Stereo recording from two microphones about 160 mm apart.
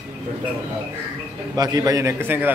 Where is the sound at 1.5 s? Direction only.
25° right (ahead or behind).